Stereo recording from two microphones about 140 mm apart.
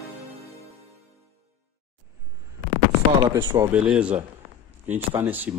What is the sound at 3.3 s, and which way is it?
Speech, 35° right (ahead or behind).